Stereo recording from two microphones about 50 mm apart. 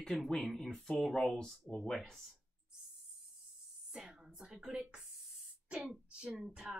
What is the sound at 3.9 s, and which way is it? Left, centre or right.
A woman's voice, centre.